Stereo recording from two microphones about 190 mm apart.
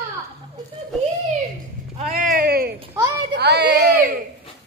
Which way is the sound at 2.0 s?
40° right (ahead or behind).